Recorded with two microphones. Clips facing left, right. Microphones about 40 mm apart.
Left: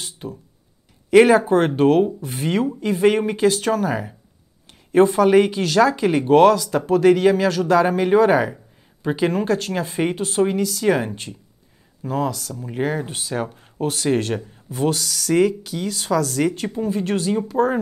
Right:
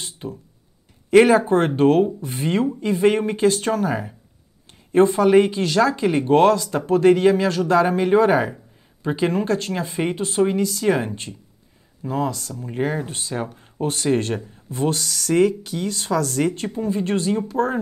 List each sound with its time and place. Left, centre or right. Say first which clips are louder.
0.2 s speech: even; centre
12.7 s speech: left 1 dB; centre
13.8 s speech: even; centre
17.5 s speech: left 4 dB; centre